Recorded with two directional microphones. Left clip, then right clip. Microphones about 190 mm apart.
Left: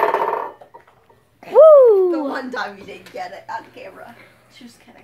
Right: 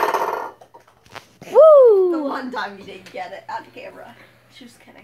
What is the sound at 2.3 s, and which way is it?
Speech, 50° right (ahead or behind).